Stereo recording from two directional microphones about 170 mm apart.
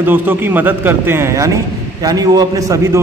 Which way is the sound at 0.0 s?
10° right (ahead or behind).